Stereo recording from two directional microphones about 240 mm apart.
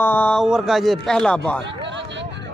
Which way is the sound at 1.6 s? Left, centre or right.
Right.